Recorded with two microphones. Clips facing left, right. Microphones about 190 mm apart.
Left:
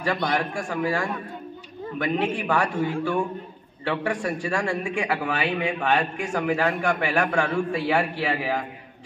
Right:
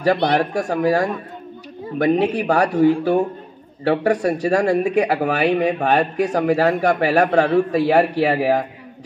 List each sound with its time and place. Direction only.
0.4 s speech: 40° right (ahead or behind)